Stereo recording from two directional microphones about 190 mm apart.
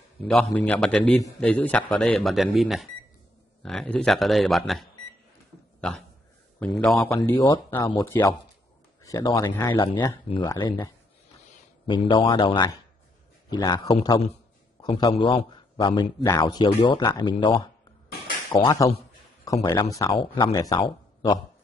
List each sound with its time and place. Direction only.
0.3 s speech: 5° left (ahead or behind)
7.3 s a man's voice: 20° left (ahead or behind)
11.9 s a man's voice: 25° left (ahead or behind)